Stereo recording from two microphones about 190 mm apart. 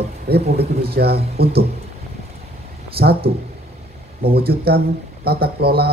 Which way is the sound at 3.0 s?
55° right (ahead or behind).